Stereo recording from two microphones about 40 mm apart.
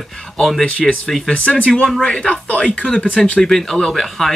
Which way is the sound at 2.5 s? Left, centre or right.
Left.